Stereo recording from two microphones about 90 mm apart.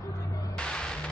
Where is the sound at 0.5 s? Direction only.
10° left (ahead or behind).